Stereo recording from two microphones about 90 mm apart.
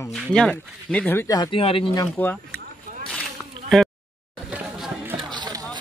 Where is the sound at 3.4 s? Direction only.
15° left (ahead or behind).